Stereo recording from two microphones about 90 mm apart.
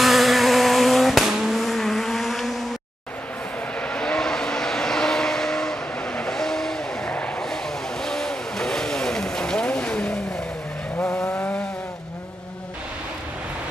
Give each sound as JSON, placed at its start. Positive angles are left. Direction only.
{"t": 0.0, "sound": "vehicle", "side_deg": 0}
{"t": 3.8, "sound": "vehicle", "side_deg": 10}
{"t": 11.2, "sound": "vehicle", "side_deg": 25}